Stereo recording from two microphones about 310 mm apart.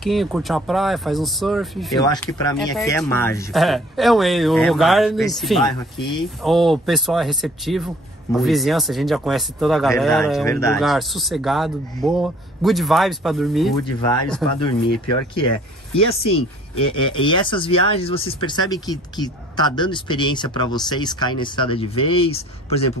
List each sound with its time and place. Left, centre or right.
0.0 s speech: centre
2.0 s speech: centre
15.9 s speech: centre